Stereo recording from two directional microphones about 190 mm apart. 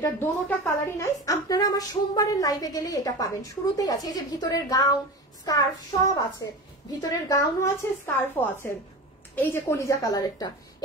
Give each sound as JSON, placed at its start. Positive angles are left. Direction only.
{"t": 0.0, "sound": "a woman's voice", "side_deg": 15}
{"t": 6.9, "sound": "a woman's voice", "side_deg": 20}